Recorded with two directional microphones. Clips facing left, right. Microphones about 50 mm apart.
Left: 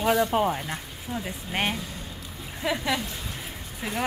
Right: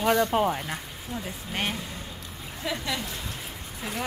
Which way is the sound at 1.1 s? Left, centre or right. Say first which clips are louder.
Left 3 dB; left.